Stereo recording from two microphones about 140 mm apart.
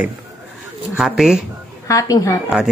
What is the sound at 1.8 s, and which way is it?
Speech, 25° left (ahead or behind).